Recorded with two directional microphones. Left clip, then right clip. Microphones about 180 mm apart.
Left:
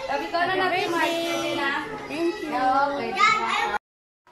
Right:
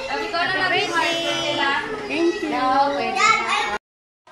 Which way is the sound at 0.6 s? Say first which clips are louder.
Right 3 dB; 20° left (ahead or behind).